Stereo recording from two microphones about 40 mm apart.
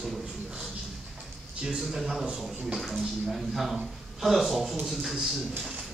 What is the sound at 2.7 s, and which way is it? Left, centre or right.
Speech, centre.